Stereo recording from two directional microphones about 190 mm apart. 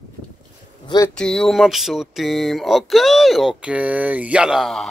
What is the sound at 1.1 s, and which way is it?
Speech, 5° left (ahead or behind).